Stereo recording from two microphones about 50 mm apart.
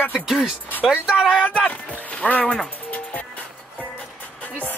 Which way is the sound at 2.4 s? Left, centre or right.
Centre.